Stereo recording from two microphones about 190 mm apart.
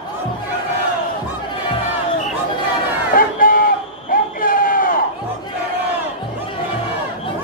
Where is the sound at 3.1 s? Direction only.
45° left (ahead or behind).